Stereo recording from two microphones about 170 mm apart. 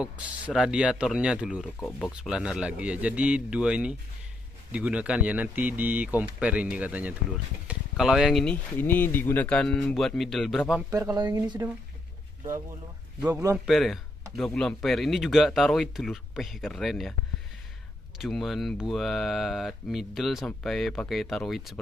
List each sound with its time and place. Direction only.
0.0 s speech: 5° right (ahead or behind)
1.8 s speech: 10° left (ahead or behind)
2.1 s speech: 5° right (ahead or behind)
10.9 s speech: 20° right (ahead or behind)
13.2 s speech: 15° right (ahead or behind)
13.7 s speech: centre (ahead or behind)
18.2 s speech: centre (ahead or behind)